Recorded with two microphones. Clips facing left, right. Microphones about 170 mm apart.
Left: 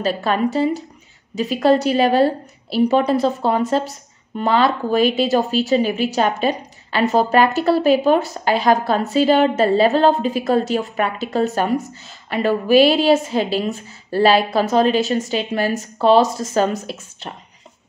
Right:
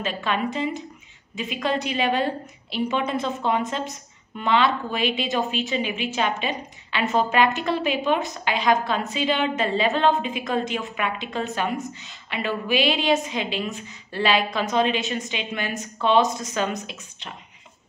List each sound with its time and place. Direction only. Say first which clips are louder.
0.0 s a woman's voice: left 7 dB; 40° left (ahead or behind)